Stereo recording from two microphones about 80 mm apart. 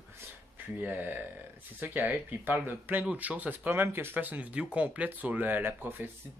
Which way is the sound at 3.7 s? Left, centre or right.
Right.